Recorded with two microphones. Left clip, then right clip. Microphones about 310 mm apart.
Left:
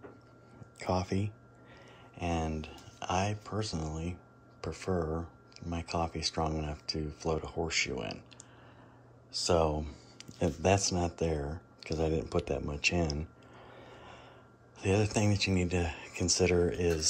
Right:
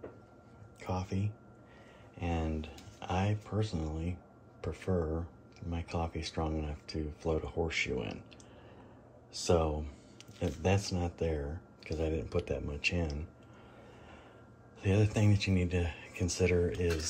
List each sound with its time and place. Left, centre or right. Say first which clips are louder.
1.1 s speech: left 5 dB; left
2.1 s speech: left 3 dB; centre
9.3 s speech: left 2 dB; centre
14.8 s speech: left 3 dB; centre